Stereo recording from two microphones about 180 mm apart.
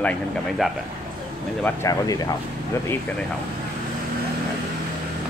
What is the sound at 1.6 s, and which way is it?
Speech, 15° left (ahead or behind).